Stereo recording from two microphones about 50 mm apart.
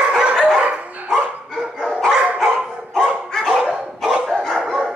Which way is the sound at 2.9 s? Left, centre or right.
Centre.